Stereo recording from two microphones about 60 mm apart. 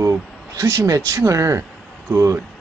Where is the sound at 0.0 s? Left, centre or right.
Right.